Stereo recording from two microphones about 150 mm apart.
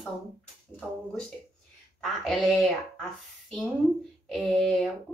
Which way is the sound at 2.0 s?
5° left (ahead or behind).